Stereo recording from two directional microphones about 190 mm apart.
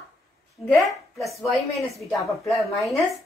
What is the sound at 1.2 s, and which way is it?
A woman's voice, centre (ahead or behind).